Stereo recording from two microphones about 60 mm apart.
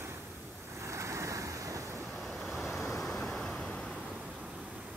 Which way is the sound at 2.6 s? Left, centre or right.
Centre.